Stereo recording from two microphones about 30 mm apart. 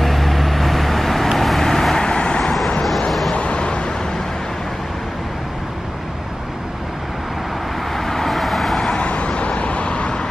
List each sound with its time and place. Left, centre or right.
0.0 s vehicle: centre
2.0 s vehicle: left
3.1 s vehicle: centre
3.3 s vehicle: left
7.9 s vehicle: centre
8.9 s vehicle: left